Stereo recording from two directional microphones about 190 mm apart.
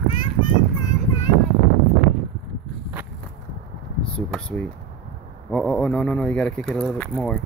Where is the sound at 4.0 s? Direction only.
5° left (ahead or behind).